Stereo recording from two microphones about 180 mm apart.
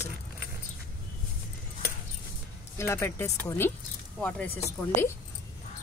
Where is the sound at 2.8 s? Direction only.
15° left (ahead or behind).